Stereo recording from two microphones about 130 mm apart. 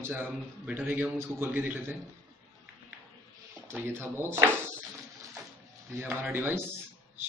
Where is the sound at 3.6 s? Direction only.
20° right (ahead or behind).